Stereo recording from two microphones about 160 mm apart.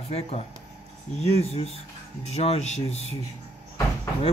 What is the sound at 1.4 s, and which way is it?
A woman's voice, 40° left (ahead or behind).